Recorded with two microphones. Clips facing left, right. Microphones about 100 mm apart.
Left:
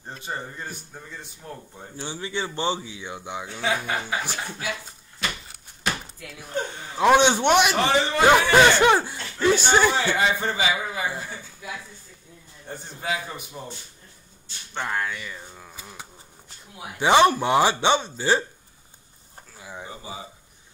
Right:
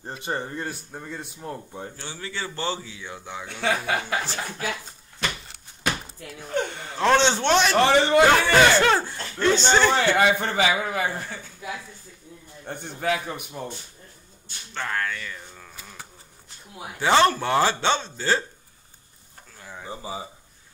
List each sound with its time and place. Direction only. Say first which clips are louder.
0.2 s a man's voice: right 4 dB; 65° right (ahead or behind)
2.0 s speech: left 7 dB; 20° left (ahead or behind)
3.6 s a man's voice: right 2 dB; 65° right (ahead or behind)
6.5 s a man's voice: right 2 dB; 65° right (ahead or behind)
7.0 s speech: left 2 dB; 15° left (ahead or behind)
7.7 s a man's voice: right 4 dB; 60° right (ahead or behind)
8.3 s speech: left 1 dB; 15° left (ahead or behind)
9.9 s a man's voice: right 3 dB; 55° right (ahead or behind)
12.6 s a man's voice: right 4 dB; 60° right (ahead or behind)
14.7 s speech: left 1 dB; 15° left (ahead or behind)
19.5 s a sound: left 2 dB; 5° left (ahead or behind)
19.9 s speech: right 4 dB; 30° right (ahead or behind)